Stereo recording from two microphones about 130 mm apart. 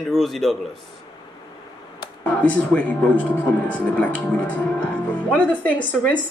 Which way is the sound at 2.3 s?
10° left (ahead or behind).